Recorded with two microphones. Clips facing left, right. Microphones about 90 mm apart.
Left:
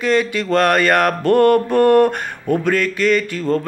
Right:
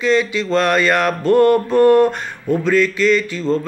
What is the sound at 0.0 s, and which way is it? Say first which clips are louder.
Mantra: right 1 dB; 50° left (ahead or behind).